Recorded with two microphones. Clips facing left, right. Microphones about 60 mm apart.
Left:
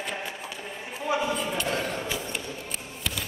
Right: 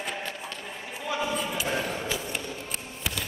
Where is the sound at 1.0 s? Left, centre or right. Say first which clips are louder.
Left 3 dB; centre.